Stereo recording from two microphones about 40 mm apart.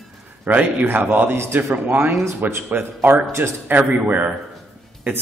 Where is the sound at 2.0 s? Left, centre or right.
Right.